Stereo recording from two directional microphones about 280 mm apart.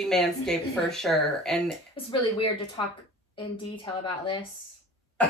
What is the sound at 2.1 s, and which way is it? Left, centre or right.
Speech, centre.